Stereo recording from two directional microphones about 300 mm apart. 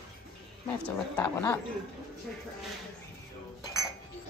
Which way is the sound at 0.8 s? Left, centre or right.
Centre.